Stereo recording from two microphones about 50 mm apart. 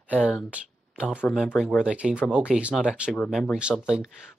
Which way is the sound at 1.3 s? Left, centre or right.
Centre.